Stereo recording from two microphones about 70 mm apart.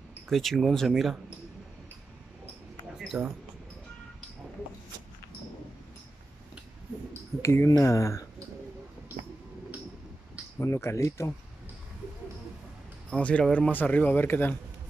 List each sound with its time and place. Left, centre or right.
0.3 s speech: centre
3.1 s speech: centre
7.4 s speech: left
10.6 s speech: left
13.1 s speech: centre; by 14.5 s left